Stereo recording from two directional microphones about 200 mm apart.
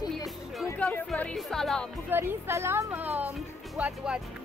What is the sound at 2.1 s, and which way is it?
A woman's voice, 10° right (ahead or behind).